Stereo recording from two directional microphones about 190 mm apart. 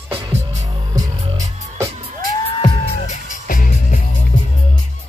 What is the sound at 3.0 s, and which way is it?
Music, 40° left (ahead or behind).